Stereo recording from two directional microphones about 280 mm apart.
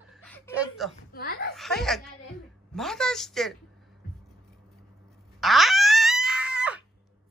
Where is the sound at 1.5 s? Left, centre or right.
Centre.